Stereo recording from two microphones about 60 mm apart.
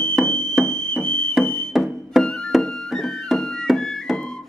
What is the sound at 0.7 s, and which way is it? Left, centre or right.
Fire alarm, centre.